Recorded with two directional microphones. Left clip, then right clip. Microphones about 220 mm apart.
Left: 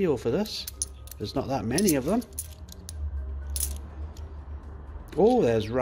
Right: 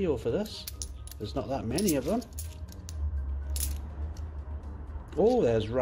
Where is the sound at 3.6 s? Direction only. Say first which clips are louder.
Left 3 dB; 20° left (ahead or behind).